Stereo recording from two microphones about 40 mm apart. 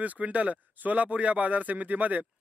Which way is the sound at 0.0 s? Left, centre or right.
Right.